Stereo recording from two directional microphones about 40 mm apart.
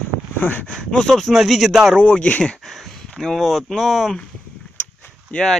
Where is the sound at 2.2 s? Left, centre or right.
Left.